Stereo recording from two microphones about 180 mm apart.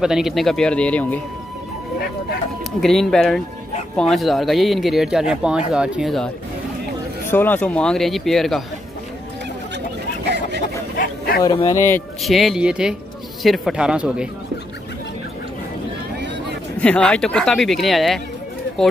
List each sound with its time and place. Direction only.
0.0 s speech: 5° right (ahead or behind)
2.8 s speech: centre (ahead or behind)
10.2 s a sound: 70° right (ahead or behind)
11.0 s bow-wow: 55° left (ahead or behind)
11.4 s speech: 25° left (ahead or behind)
12.2 s speech: centre (ahead or behind)
16.8 s speech: 5° left (ahead or behind)